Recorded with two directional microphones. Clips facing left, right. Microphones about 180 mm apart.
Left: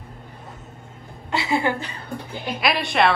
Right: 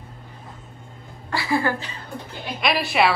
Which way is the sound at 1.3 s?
20° left (ahead or behind).